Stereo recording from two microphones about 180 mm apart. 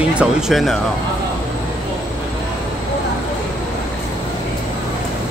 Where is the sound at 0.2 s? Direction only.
Centre (ahead or behind).